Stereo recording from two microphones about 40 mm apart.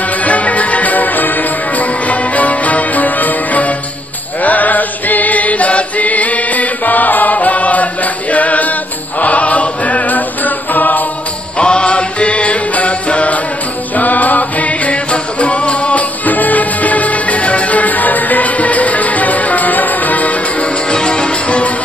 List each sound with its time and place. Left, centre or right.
0.2 s music: left
4.4 s chant: left
11.5 s music: left
20.9 s music: left